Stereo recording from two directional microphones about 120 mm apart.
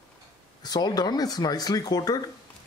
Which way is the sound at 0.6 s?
35° left (ahead or behind).